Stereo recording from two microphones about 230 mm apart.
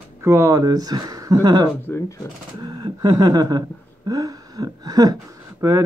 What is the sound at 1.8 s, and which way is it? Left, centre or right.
Speech, centre.